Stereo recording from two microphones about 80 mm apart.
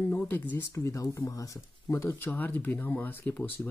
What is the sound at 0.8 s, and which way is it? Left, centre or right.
Speech, left.